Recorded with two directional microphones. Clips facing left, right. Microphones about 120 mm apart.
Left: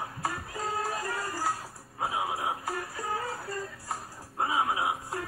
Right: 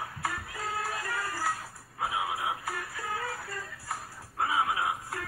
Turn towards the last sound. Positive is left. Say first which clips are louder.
# left 1 dB
turn(degrees=20)  # may be behind; listen again after turning